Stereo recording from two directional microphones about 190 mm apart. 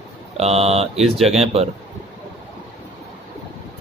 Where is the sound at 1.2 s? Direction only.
30° right (ahead or behind).